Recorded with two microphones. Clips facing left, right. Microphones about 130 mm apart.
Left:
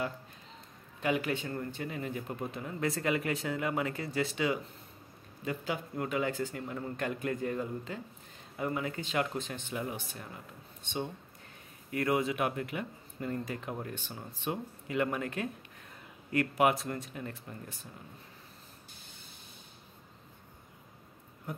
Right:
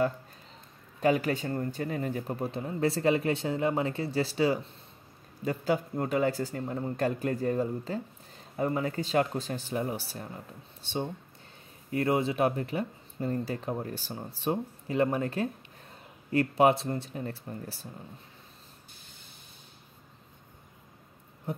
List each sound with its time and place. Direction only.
1.0 s speech: 40° right (ahead or behind)